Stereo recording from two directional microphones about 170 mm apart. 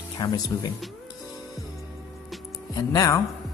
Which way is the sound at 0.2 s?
25° left (ahead or behind).